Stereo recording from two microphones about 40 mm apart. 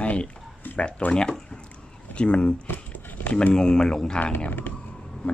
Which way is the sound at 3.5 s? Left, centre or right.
Centre.